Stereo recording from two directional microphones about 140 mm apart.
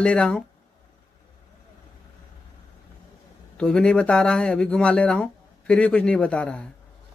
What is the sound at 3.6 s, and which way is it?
Speech, 5° left (ahead or behind).